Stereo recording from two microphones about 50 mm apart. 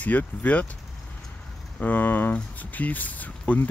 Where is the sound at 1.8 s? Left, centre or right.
Left.